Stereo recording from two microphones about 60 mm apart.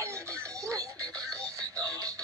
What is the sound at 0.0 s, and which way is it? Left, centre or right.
Music, right.